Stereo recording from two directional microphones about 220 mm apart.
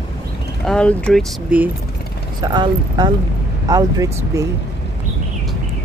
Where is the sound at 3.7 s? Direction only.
15° right (ahead or behind).